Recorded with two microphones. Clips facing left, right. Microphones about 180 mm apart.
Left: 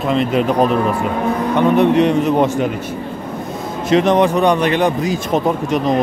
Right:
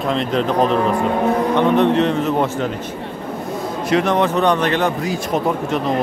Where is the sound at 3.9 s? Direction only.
20° left (ahead or behind).